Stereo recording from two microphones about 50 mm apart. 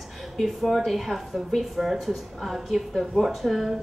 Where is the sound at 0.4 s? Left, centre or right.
Centre.